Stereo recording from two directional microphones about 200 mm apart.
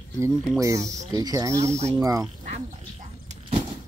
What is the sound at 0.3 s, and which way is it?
Speech, centre (ahead or behind).